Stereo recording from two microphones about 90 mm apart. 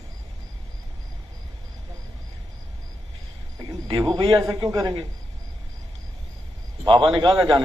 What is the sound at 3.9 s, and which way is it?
A man's voice, 65° right (ahead or behind).